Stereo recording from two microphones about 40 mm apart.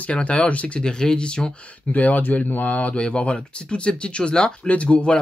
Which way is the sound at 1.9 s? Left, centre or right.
Left.